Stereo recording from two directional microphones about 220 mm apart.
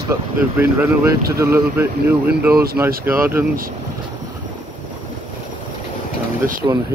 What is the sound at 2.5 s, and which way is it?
Speech, 45° right (ahead or behind).